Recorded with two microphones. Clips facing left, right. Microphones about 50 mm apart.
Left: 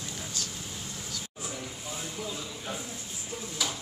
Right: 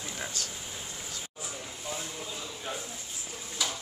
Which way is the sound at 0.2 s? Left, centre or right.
Right.